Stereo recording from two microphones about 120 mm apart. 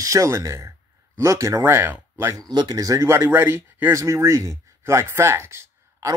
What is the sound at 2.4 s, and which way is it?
Speech, 35° right (ahead or behind).